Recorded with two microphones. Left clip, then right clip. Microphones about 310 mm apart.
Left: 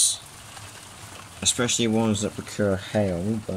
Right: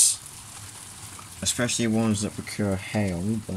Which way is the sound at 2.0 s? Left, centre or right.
Left.